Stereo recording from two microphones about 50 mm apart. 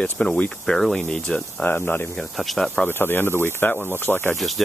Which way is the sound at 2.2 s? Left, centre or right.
Centre.